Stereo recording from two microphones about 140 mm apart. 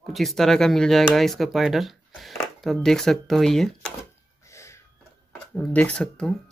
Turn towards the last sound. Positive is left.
turn(degrees=10)  # may be behind; listen again after turning